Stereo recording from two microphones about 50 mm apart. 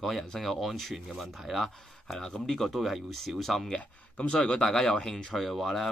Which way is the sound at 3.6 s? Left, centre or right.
Left.